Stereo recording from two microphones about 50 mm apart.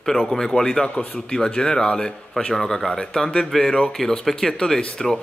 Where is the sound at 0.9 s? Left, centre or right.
Left.